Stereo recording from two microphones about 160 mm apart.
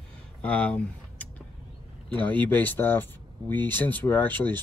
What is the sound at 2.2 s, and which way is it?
Speech, 30° right (ahead or behind).